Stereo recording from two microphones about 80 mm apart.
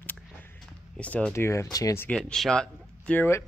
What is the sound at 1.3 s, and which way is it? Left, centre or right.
Speech, left.